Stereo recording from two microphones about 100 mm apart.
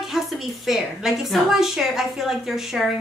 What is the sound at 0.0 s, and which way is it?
A woman's voice, centre (ahead or behind).